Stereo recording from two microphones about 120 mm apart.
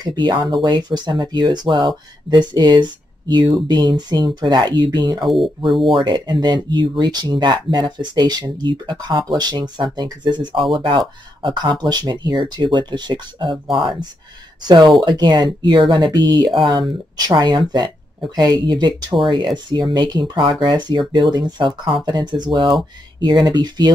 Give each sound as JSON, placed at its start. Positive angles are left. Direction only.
{"t": 0.0, "sound": "speech", "side_deg": -40}
{"t": 5.2, "sound": "speech", "side_deg": 0}
{"t": 6.0, "sound": "speech", "side_deg": -40}
{"t": 14.6, "sound": "speech", "side_deg": -35}